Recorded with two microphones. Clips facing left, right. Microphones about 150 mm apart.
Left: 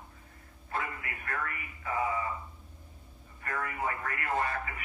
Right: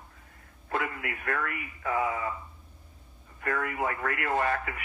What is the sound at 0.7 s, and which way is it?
Speech, 60° right (ahead or behind).